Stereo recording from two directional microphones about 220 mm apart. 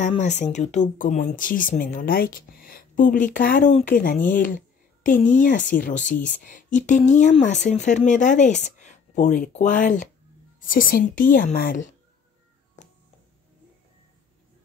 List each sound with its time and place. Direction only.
0.0 s speech: 30° left (ahead or behind)